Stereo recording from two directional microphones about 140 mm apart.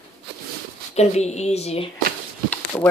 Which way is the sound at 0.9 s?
50° left (ahead or behind).